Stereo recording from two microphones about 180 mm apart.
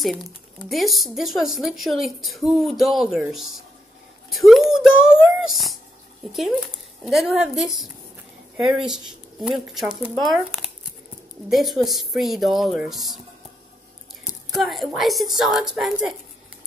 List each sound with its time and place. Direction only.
0.7 s speech: centre (ahead or behind)
14.5 s speech: centre (ahead or behind)